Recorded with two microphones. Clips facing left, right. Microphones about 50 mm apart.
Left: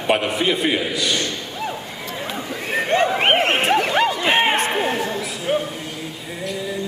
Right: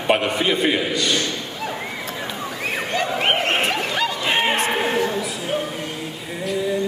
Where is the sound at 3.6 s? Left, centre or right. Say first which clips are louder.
Left 4 dB; left.